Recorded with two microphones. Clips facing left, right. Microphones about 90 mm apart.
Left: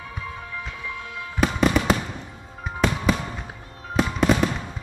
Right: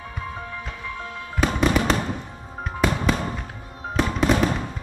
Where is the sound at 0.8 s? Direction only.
40° right (ahead or behind).